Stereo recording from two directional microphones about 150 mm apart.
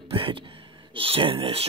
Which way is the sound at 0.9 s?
35° right (ahead or behind).